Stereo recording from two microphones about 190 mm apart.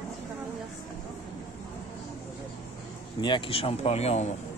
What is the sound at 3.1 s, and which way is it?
Speech, 25° left (ahead or behind).